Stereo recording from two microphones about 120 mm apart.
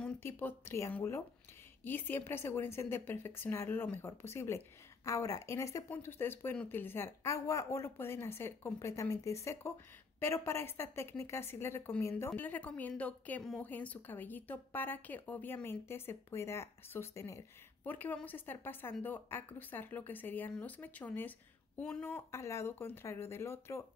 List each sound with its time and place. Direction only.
0.2 s a woman's voice: 20° left (ahead or behind)